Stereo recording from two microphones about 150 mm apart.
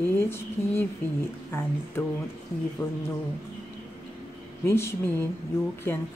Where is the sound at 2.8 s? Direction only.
15° left (ahead or behind).